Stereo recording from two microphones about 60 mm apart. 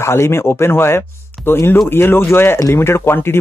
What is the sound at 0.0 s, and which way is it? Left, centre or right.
Speech, left.